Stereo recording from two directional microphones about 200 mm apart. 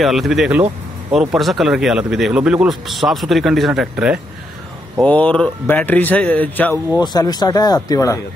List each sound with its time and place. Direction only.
0.0 s speech: centre (ahead or behind)
5.0 s speech: 5° left (ahead or behind)
7.0 s speech: 20° left (ahead or behind)